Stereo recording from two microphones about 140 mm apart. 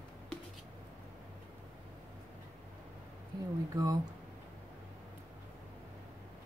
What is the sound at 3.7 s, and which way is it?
Speech, 25° right (ahead or behind).